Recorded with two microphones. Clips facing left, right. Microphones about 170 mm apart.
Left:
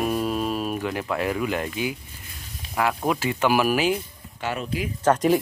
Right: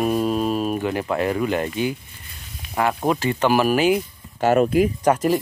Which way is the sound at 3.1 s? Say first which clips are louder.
Right 3 dB; 5° left (ahead or behind).